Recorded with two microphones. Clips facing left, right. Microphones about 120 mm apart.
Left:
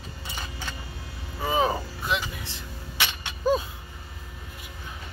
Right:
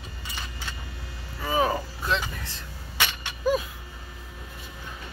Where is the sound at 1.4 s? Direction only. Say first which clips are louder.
Even; 20° left (ahead or behind).